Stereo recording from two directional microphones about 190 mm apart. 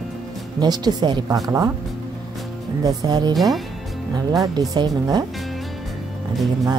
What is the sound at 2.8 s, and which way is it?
Speech, 20° right (ahead or behind).